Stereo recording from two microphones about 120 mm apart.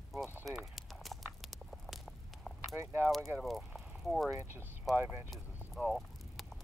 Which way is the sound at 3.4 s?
Centre (ahead or behind).